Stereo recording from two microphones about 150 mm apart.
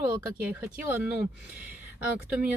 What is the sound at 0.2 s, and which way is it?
Speech, 15° right (ahead or behind).